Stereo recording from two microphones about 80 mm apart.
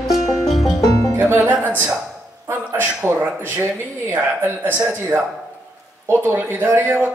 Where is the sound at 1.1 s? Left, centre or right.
Right.